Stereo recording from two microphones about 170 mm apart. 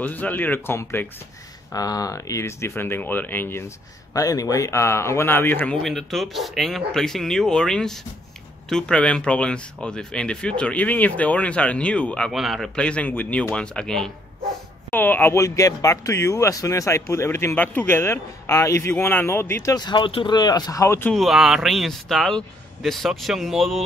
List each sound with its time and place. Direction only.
0.0 s speech: 10° left (ahead or behind)
5.8 s speech: centre (ahead or behind)
21.1 s speech: centre (ahead or behind)